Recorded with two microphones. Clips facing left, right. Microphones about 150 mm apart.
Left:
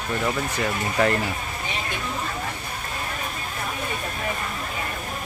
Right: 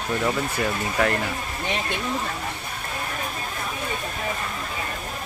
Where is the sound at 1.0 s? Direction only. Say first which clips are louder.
Left 2 dB; centre (ahead or behind).